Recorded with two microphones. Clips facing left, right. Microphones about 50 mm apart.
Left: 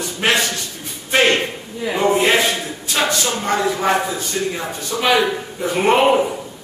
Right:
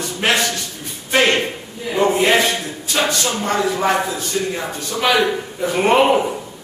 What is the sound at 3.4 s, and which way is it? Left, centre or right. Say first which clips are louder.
A man's voice: even; centre.